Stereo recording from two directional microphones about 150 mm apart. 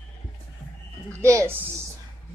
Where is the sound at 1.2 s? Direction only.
20° right (ahead or behind).